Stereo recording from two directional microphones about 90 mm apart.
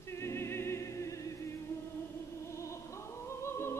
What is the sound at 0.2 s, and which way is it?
Music, 30° left (ahead or behind).